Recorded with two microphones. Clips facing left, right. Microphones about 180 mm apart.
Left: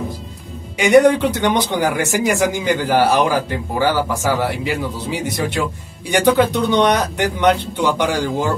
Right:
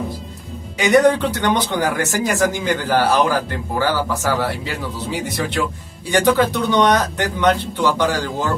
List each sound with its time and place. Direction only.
0.7 s a man's voice: 15° left (ahead or behind)